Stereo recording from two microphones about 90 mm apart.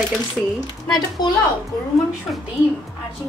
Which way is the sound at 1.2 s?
50° left (ahead or behind).